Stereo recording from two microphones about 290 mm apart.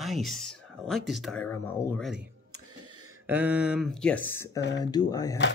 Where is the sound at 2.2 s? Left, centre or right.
Right.